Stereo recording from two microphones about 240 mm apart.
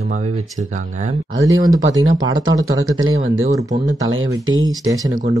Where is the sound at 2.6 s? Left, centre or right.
Right.